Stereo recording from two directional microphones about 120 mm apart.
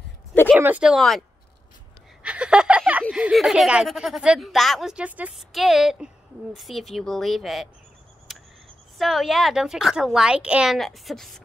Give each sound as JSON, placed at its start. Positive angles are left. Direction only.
{"t": 0.5, "sound": "speech", "side_deg": -15}
{"t": 0.8, "sound": "speech", "side_deg": 0}
{"t": 2.2, "sound": "speech", "side_deg": -10}
{"t": 8.3, "sound": "cricket", "side_deg": 0}
{"t": 8.9, "sound": "speech", "side_deg": 0}